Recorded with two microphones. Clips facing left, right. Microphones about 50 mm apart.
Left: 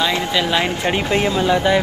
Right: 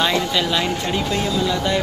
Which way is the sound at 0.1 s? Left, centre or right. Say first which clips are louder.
Left 1 dB; left.